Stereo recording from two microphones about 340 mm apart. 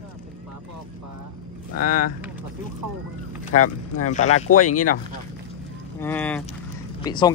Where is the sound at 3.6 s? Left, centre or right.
Left.